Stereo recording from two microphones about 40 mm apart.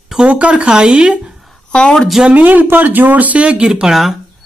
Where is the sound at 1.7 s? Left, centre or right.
Left.